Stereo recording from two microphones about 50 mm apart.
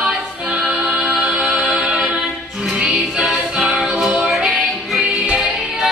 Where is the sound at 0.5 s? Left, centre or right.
Centre.